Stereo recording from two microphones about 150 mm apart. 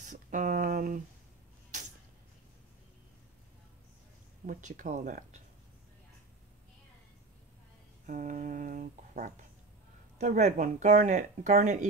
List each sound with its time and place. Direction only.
0.0 s a sound: 60° right (ahead or behind)
4.5 s speech: 55° right (ahead or behind)
8.1 s speech: 55° right (ahead or behind)